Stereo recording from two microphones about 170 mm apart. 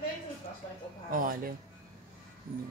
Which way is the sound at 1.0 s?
55° right (ahead or behind).